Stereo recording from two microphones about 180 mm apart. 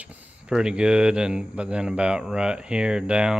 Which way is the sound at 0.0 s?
5° right (ahead or behind).